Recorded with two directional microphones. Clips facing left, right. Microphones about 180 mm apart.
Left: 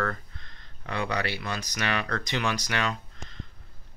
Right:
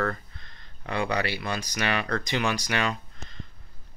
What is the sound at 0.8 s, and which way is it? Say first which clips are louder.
Speech: right 2 dB; 10° right (ahead or behind).